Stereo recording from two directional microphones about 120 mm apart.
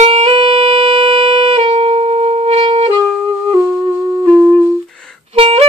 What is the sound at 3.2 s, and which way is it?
Music, 20° right (ahead or behind).